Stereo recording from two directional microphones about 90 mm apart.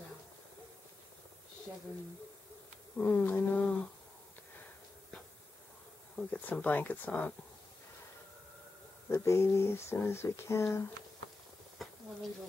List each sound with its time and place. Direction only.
3.0 s speech: 25° left (ahead or behind)
6.1 s speech: 15° left (ahead or behind)
9.1 s speech: 30° left (ahead or behind)
11.8 s a sound: centre (ahead or behind)